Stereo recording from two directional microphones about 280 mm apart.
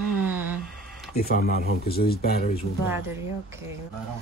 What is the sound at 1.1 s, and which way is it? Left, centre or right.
Speech, left.